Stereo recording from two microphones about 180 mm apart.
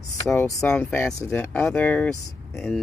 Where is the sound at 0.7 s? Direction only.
10° left (ahead or behind).